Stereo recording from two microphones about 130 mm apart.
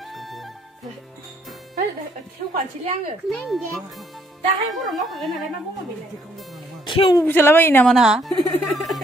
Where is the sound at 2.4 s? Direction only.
85° right.